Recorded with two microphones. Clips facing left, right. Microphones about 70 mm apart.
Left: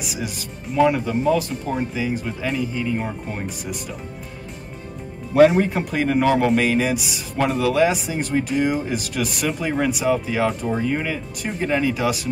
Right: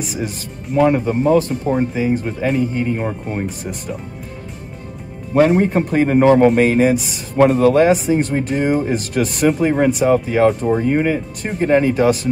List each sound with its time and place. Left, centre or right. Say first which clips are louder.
0.0 s speech: right 5 dB; right
5.6 s speech: right 5 dB; right